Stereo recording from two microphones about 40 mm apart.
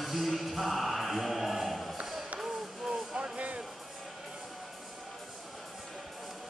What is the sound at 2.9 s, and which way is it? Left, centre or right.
Music, right.